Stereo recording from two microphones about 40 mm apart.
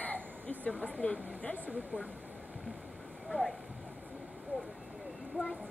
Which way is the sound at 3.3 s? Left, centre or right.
Centre.